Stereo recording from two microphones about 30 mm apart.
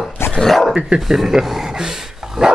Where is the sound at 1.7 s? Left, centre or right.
Centre.